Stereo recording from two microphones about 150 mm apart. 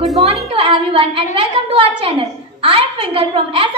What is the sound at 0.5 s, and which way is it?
A woman's voice, 35° right (ahead or behind).